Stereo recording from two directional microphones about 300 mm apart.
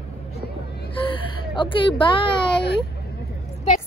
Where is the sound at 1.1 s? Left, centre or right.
Centre.